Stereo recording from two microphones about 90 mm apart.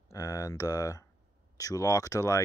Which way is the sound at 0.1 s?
35° left (ahead or behind).